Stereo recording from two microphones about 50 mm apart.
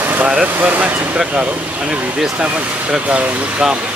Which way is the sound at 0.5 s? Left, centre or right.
Right.